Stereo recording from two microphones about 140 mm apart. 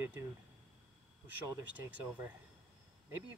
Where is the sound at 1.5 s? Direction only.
25° right (ahead or behind).